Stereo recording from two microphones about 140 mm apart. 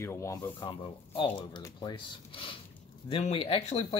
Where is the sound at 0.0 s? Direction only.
20° left (ahead or behind).